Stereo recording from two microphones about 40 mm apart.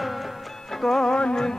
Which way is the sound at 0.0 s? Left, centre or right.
Centre.